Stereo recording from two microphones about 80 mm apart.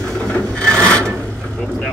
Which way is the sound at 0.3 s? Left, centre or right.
Centre.